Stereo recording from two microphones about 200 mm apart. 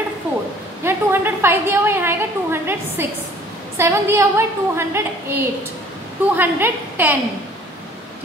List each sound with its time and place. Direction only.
0.8 s a woman's voice: 10° right (ahead or behind)